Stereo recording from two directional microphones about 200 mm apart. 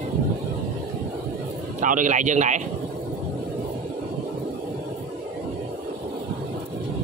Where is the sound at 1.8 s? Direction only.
40° right (ahead or behind).